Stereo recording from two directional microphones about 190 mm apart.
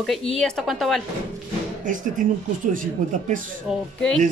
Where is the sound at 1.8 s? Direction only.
45° right (ahead or behind).